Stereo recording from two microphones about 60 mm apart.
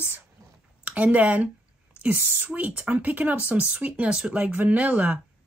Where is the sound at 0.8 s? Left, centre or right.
Right.